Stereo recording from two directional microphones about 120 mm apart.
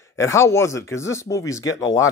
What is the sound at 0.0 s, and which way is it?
Speech, 25° left (ahead or behind).